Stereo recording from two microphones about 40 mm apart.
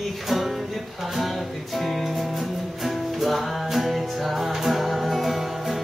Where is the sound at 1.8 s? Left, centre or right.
Centre.